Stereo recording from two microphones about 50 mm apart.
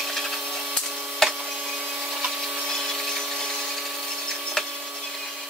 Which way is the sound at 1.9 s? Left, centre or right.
Centre.